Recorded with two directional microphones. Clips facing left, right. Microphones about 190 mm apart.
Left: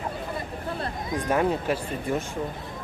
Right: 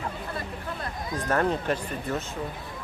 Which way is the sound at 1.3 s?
10° left (ahead or behind).